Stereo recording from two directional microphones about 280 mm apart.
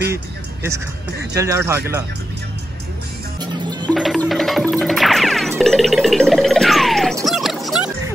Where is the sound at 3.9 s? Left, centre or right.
Centre.